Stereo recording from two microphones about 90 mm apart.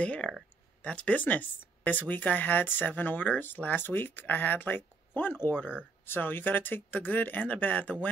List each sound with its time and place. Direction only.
0.0 s speech: 15° left (ahead or behind)